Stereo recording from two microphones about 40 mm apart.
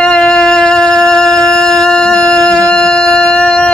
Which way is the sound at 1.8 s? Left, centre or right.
Left.